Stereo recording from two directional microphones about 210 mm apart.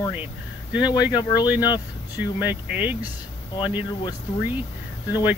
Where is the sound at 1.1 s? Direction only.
20° left (ahead or behind).